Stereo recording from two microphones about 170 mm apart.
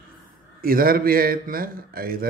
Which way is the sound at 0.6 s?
60° right (ahead or behind).